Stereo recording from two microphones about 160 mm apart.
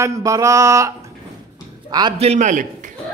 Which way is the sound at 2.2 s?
45° right (ahead or behind).